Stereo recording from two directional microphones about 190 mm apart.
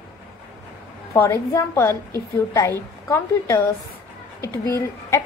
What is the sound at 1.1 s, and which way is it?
A woman's voice, 10° left (ahead or behind).